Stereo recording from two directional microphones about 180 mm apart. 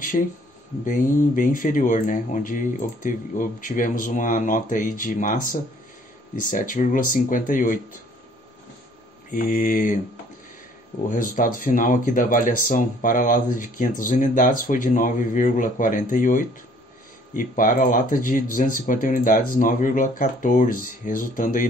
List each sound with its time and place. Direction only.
0.8 s speech: 50° left (ahead or behind)
9.3 s speech: 50° left (ahead or behind)
11.1 s speech: 50° left (ahead or behind)